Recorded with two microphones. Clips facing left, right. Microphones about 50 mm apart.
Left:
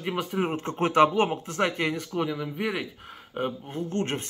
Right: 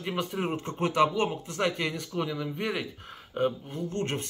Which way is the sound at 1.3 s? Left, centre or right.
Left.